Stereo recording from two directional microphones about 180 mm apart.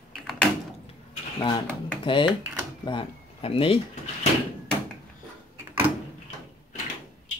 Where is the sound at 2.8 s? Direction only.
30° left (ahead or behind).